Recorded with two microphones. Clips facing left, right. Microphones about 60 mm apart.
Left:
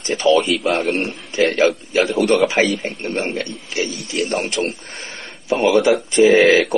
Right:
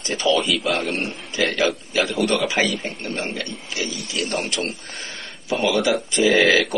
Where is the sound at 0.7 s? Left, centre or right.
Left.